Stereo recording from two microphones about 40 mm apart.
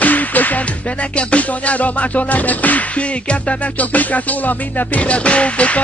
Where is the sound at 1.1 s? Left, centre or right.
Left.